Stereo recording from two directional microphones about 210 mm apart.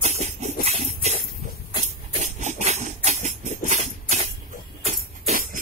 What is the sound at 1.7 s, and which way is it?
Music, 35° right (ahead or behind).